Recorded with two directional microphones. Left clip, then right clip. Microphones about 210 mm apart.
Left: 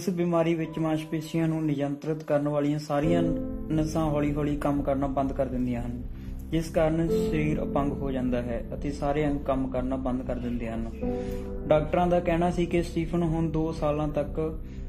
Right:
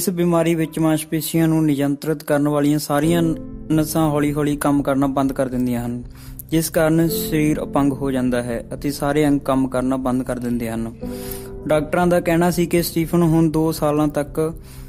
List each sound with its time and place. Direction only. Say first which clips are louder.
0.2 s a man's voice: right 7 dB; 40° right (ahead or behind)